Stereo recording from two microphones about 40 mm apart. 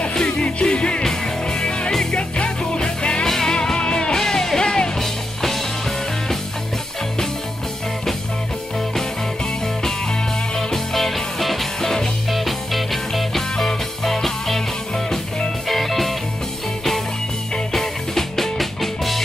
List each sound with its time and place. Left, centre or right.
0.1 s music: left
3.3 s music: centre
3.5 s music: left
10.5 s music: centre
12.3 s music: centre
15.7 s music: centre
17.7 s music: centre